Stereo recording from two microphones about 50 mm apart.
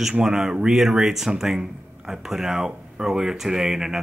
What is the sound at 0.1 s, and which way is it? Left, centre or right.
Speech, centre.